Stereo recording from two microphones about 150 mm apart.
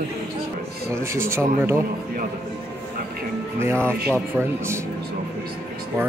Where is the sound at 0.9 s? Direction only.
15° right (ahead or behind).